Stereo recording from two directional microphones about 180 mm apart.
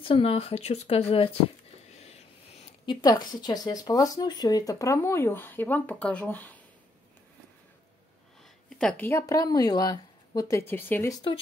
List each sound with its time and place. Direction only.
0.0 s speech: 30° left (ahead or behind)
1.9 s a sound: 35° left (ahead or behind)
3.0 s speech: 20° left (ahead or behind)
8.6 s speech: 5° left (ahead or behind)